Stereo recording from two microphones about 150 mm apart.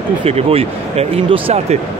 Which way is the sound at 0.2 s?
40° right (ahead or behind).